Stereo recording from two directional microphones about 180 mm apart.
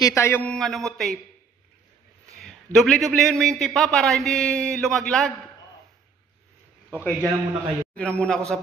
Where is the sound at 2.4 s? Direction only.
Centre (ahead or behind).